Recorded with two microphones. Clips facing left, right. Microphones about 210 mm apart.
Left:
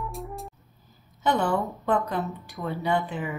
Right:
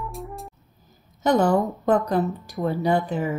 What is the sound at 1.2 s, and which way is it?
Speech, 40° right (ahead or behind).